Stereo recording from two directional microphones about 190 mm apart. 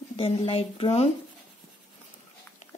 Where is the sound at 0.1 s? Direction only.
30° left (ahead or behind).